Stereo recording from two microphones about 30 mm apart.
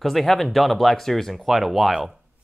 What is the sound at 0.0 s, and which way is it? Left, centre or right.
Speech, centre.